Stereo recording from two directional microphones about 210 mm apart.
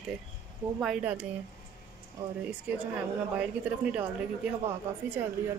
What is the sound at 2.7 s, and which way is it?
Speech, 5° right (ahead or behind).